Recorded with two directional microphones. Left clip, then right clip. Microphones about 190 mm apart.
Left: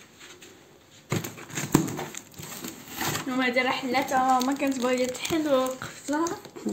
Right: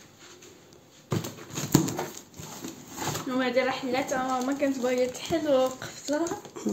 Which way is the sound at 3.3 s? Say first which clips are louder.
Left 1 dB; 55° left (ahead or behind).